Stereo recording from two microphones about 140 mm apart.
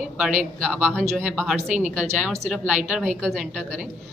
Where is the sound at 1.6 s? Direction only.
60° right (ahead or behind).